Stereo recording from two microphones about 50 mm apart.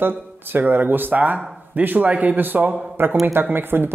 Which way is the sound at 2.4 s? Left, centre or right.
Right.